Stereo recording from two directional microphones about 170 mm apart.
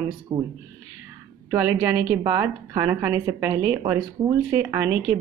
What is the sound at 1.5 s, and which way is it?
A woman's voice, 15° right (ahead or behind).